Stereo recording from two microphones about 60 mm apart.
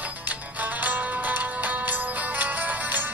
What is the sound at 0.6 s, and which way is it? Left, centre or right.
Music, right.